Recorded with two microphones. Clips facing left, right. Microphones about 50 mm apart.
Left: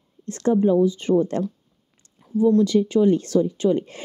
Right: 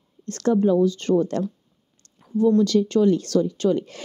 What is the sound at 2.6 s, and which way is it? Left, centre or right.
A woman's voice, centre.